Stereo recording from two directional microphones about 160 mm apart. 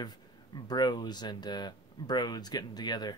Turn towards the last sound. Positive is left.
turn(degrees=25)  # may be behind; listen again after turning